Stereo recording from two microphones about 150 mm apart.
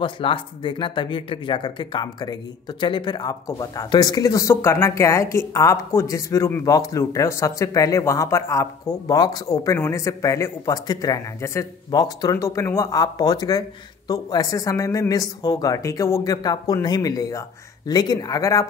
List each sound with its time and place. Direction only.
0.0 s speech: 35° left (ahead or behind)